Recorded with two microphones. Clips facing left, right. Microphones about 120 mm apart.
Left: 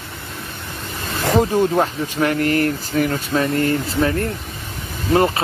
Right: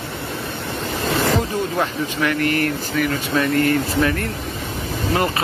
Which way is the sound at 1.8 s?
40° left (ahead or behind).